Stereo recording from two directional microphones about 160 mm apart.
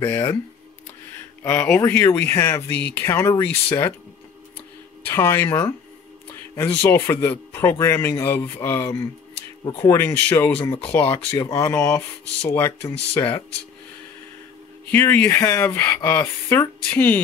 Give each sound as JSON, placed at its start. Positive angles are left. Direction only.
{"t": 0.0, "sound": "speech", "side_deg": 15}
{"t": 1.4, "sound": "speech", "side_deg": 15}
{"t": 5.0, "sound": "speech", "side_deg": 15}
{"t": 14.9, "sound": "speech", "side_deg": 10}